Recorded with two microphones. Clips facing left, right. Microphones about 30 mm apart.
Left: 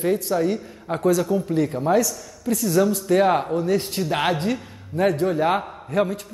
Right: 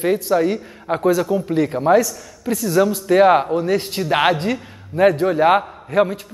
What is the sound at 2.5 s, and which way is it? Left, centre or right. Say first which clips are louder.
A man's voice: right 3 dB; centre.